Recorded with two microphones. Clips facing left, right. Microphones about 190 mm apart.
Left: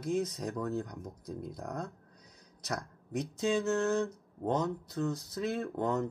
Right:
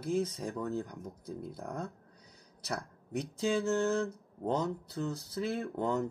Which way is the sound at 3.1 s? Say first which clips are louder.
Left 1 dB; 30° right (ahead or behind).